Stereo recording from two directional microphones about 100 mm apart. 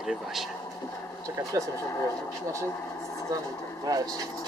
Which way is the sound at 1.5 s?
35° right (ahead or behind).